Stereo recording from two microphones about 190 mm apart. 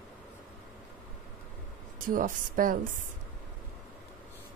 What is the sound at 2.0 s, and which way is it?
Speech, 45° right (ahead or behind).